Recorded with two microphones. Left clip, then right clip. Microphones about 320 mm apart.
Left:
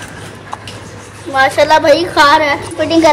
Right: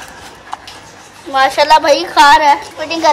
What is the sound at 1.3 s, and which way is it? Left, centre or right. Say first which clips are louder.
A woman's voice: even; right.